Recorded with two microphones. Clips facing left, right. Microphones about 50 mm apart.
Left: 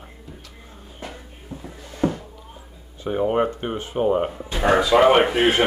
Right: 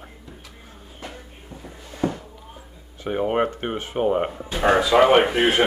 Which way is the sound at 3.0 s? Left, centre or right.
Right.